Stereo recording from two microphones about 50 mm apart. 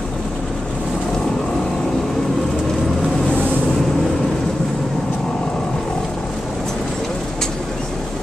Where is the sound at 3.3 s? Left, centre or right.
Left.